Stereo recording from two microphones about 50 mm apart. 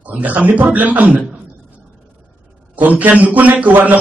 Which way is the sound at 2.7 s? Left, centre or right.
Right.